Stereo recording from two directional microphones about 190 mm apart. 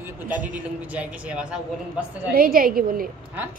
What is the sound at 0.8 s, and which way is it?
Speech, 5° right (ahead or behind).